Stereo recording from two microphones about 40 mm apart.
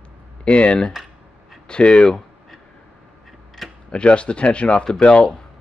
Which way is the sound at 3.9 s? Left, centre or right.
Left.